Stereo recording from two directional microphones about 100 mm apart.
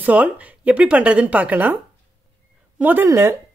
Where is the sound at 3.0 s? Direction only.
30° right (ahead or behind).